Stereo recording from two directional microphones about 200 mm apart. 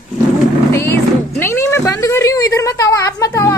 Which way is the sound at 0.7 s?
15° left (ahead or behind).